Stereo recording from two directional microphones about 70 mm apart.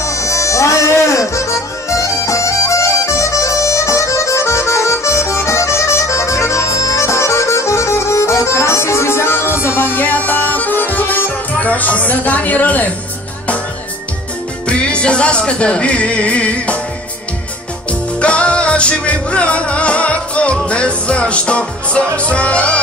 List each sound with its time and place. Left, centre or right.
0.0 s music: left
14.7 s music: centre
18.2 s music: centre